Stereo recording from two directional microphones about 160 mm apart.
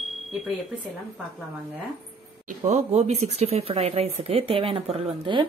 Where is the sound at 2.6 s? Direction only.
40° right (ahead or behind).